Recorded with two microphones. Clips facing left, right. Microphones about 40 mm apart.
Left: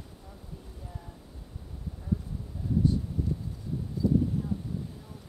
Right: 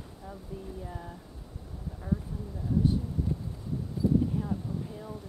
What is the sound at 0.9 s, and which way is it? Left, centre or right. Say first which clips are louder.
Speech: right 5 dB; right.